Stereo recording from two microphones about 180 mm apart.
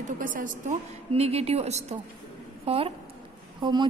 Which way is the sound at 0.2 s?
50° right (ahead or behind).